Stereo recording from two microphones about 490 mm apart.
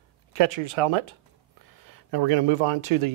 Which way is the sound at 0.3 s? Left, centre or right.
Right.